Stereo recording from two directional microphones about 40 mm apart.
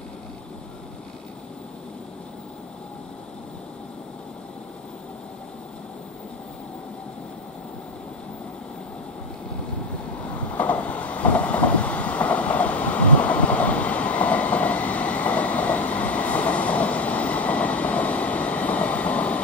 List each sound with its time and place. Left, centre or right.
10.6 s train: left